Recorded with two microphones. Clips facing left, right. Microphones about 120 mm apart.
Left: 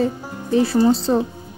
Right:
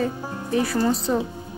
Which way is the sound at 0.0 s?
30° left (ahead or behind).